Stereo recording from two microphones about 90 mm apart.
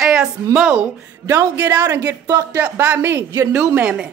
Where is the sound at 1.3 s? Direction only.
25° right (ahead or behind).